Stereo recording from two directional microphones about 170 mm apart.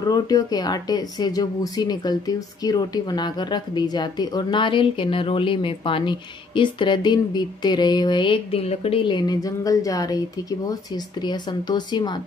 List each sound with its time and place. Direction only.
0.0 s a woman's voice: 20° left (ahead or behind)